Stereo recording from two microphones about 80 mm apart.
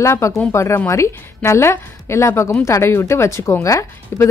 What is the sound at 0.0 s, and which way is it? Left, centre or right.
A woman's voice, left.